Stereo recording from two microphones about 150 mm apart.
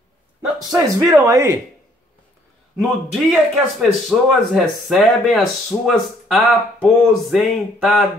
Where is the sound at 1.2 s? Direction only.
20° right (ahead or behind).